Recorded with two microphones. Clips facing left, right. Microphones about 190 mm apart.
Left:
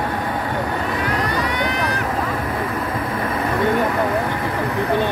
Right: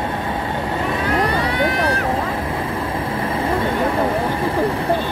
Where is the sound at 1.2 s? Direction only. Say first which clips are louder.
Right 3 dB; 30° right (ahead or behind).